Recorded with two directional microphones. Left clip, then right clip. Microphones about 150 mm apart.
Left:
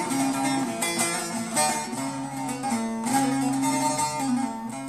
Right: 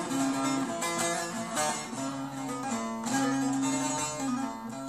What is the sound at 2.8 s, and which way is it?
Music, 25° left (ahead or behind).